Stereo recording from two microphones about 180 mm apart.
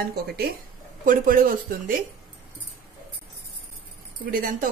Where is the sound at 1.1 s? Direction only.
50° right (ahead or behind).